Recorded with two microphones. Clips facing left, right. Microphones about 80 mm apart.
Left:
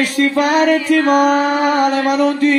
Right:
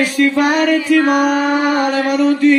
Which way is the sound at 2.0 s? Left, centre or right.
Left.